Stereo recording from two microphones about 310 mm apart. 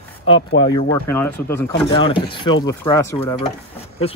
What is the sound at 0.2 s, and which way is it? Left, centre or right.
Speech, left.